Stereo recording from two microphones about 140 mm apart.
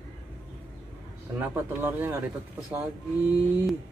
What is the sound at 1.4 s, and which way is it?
Speech, 15° right (ahead or behind).